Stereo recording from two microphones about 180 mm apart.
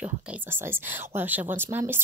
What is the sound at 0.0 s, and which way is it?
A woman's voice, 10° right (ahead or behind).